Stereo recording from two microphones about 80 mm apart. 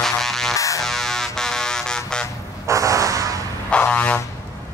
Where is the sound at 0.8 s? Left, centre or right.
Centre.